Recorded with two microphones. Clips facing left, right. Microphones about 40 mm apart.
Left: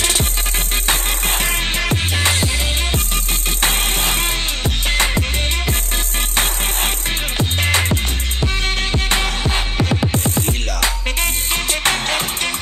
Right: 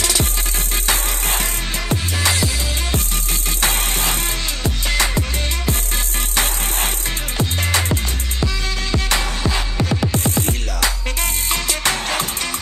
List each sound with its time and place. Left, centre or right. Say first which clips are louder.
0.0 s music: left 1 dB; left
7.3 s music: left 2 dB; left
11.5 s music: left 2 dB; left